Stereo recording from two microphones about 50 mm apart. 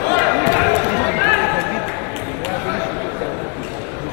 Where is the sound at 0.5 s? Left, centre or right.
Centre.